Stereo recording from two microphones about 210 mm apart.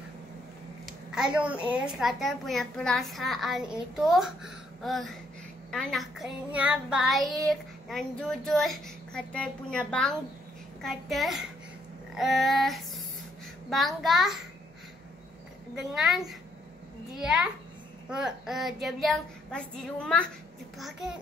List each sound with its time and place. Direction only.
0.8 s a sound: 5° right (ahead or behind)
1.7 s child singing: centre (ahead or behind)
15.7 s child singing: centre (ahead or behind)
17.2 s child singing: 5° right (ahead or behind)